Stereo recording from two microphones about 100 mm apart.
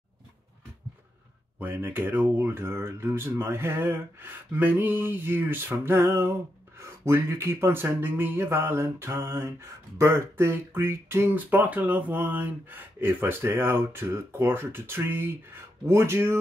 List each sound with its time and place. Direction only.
1.6 s speech: 20° right (ahead or behind)